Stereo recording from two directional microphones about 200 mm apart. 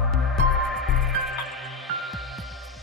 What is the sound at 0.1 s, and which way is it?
Music, centre (ahead or behind).